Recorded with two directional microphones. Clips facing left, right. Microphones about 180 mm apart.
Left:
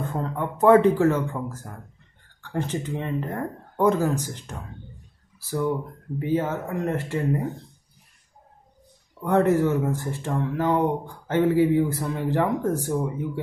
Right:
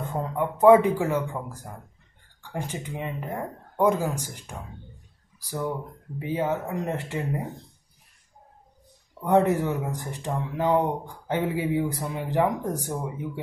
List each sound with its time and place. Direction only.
0.1 s speech: 15° right (ahead or behind)
9.2 s speech: 15° right (ahead or behind)